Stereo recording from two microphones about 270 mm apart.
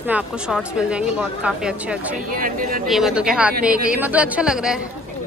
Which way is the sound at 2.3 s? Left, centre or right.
Right.